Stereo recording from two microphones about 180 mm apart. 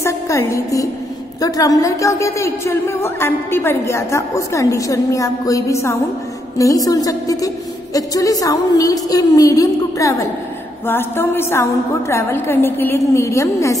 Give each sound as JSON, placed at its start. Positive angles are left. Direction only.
{"t": 0.0, "sound": "a woman's voice", "side_deg": 15}